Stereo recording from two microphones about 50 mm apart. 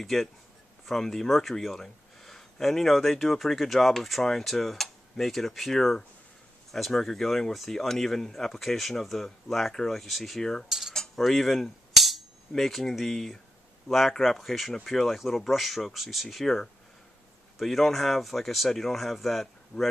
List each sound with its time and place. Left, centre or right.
0.0 s speech: centre
10.9 s a sound: centre
13.8 s speech: centre